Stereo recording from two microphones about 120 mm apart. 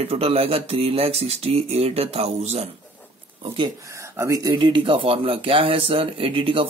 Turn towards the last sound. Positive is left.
turn(degrees=-50)  # may be behind; listen again after turning